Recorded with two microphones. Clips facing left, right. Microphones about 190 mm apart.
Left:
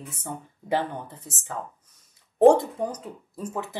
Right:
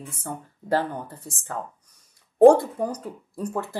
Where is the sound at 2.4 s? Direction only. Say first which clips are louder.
Right 3 dB; 10° right (ahead or behind).